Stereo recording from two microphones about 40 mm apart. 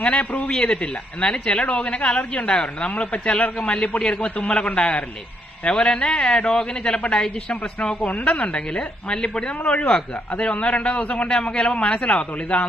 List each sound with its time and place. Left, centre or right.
0.4 s a man's voice: left
11.2 s speech: left